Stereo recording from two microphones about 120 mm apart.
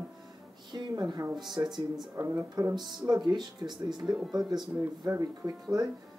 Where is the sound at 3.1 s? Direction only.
35° right (ahead or behind).